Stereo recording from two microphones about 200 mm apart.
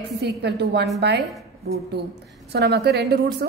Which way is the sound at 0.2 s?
55° right (ahead or behind).